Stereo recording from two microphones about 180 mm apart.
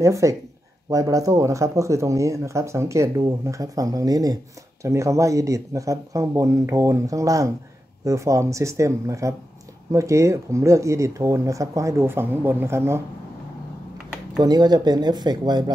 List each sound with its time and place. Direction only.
0.0 s speech: 15° right (ahead or behind)
14.4 s speech: 25° right (ahead or behind)